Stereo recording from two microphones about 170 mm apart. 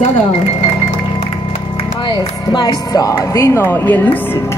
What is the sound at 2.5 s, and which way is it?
Music, 25° left (ahead or behind).